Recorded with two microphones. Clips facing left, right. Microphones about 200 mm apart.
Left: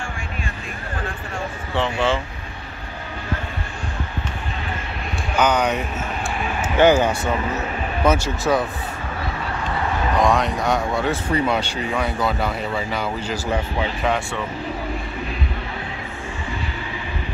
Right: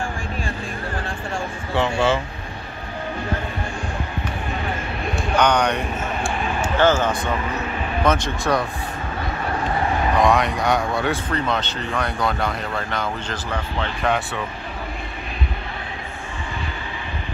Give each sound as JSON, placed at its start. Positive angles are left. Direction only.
{"t": 1.8, "sound": "speech", "side_deg": -10}
{"t": 5.4, "sound": "speech", "side_deg": 5}
{"t": 6.8, "sound": "speech", "side_deg": 15}
{"t": 10.1, "sound": "speech", "side_deg": 0}